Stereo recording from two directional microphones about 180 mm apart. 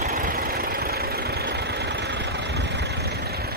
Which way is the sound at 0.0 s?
55° right (ahead or behind).